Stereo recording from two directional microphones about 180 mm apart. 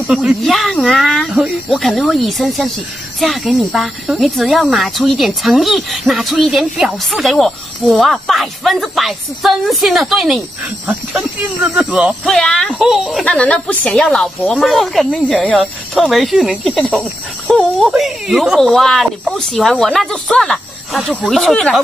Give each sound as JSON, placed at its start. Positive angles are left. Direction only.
{"t": 0.0, "sound": "speech", "side_deg": 0}